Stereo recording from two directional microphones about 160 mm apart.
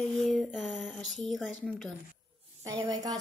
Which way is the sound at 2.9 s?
25° right (ahead or behind).